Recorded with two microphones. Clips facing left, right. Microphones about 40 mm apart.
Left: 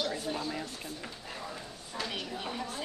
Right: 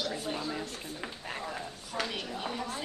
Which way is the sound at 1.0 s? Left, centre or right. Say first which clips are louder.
Right 3 dB; right.